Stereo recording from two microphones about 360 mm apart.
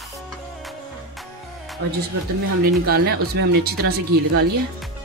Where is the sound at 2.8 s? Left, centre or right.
Right.